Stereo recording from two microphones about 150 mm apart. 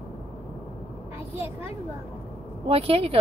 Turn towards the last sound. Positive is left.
turn(degrees=-40)  # may be behind; listen again after turning